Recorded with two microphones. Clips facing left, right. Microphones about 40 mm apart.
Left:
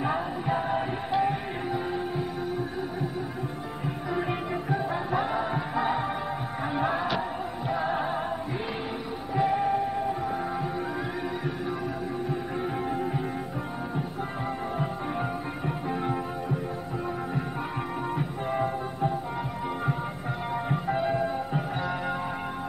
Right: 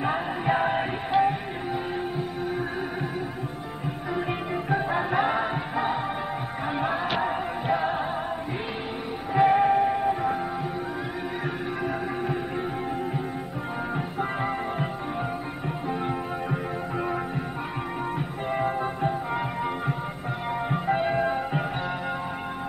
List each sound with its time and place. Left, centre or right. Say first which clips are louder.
0.5 s music: right 4 dB; right
4.6 s music: right 5 dB; right
6.8 s music: even; centre
7.1 s music: right 3 dB; right
9.3 s music: right 6 dB; right
20.7 s music: right 3 dB; right